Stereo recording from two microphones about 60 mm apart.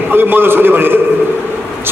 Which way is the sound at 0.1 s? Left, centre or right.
Right.